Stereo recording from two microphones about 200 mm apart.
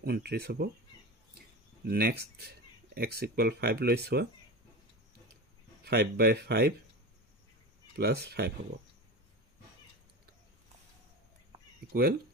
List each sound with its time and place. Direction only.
0.0 s speech: 50° right (ahead or behind)
1.9 s speech: 50° right (ahead or behind)
5.9 s speech: 55° right (ahead or behind)
7.9 s speech: 50° right (ahead or behind)
11.9 s speech: 50° right (ahead or behind)